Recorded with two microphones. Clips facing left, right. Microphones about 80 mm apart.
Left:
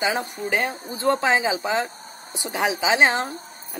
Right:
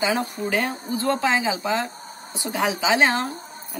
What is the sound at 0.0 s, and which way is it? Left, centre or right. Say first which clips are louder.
Speech: right 1 dB; left.